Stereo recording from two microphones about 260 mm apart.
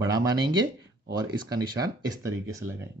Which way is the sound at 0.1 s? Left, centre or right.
Centre.